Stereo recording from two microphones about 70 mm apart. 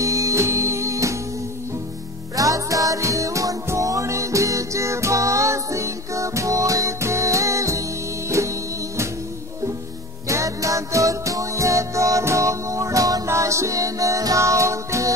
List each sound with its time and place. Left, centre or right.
0.0 s music: right
2.3 s music: right
10.2 s music: right
13.3 s music: right